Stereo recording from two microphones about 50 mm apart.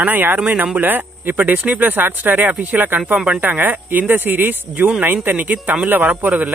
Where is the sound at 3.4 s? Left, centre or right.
Right.